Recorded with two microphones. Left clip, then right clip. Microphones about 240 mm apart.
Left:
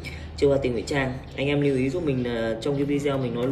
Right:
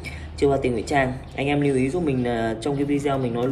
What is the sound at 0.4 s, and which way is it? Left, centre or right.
Speech, centre.